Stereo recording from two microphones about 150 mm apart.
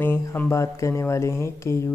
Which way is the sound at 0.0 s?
15° left (ahead or behind).